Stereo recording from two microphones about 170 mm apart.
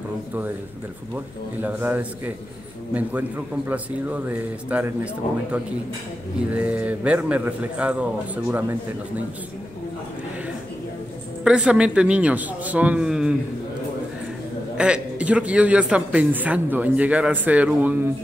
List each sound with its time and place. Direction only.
1.1 s a man's voice: 10° right (ahead or behind)
11.4 s a man's voice: 5° right (ahead or behind)
14.8 s a man's voice: 5° right (ahead or behind)